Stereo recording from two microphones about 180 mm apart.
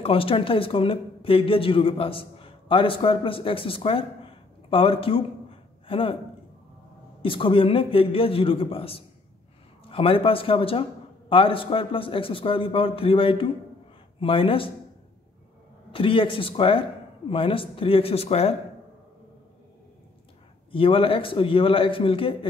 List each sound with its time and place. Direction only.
0.0 s speech: 30° left (ahead or behind)
7.2 s a man's voice: 30° left (ahead or behind)
15.9 s a man's voice: 30° left (ahead or behind)
20.7 s a man's voice: 30° left (ahead or behind)